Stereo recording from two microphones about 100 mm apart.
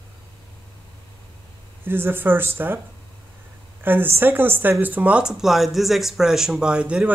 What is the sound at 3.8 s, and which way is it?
Speech, 20° right (ahead or behind).